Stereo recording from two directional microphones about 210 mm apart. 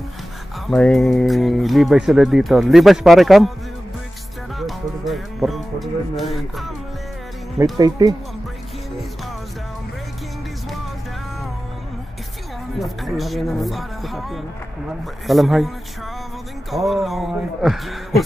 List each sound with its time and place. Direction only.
0.7 s speech: centre (ahead or behind)
4.6 s music: centre (ahead or behind)
7.7 s speech: 15° right (ahead or behind)
12.7 s speech: centre (ahead or behind)
16.7 s speech: centre (ahead or behind)